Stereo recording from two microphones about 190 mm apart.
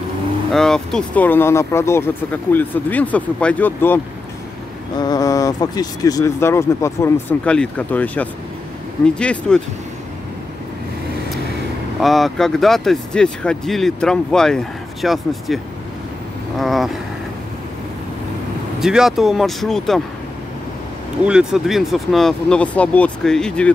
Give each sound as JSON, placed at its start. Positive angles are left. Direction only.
{"t": 0.5, "sound": "speech", "side_deg": 0}
{"t": 12.0, "sound": "speech", "side_deg": 0}
{"t": 18.8, "sound": "speech", "side_deg": -5}
{"t": 21.3, "sound": "speech", "side_deg": -5}